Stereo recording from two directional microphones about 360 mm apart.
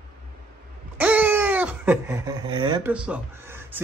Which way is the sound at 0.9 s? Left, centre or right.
Centre.